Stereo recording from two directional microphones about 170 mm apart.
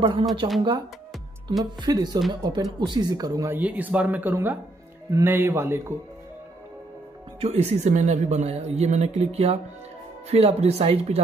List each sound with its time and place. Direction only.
0.0 s a woman's voice: 30° right (ahead or behind)
1.6 s speech: 25° right (ahead or behind)
7.3 s a woman's voice: 40° right (ahead or behind)